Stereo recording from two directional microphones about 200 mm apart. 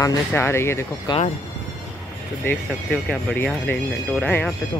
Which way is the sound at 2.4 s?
5° left (ahead or behind).